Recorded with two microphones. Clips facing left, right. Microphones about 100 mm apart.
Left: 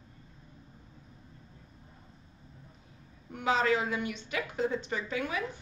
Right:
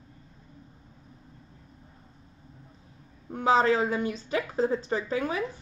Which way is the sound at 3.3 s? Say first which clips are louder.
Right 5 dB; 35° right (ahead or behind).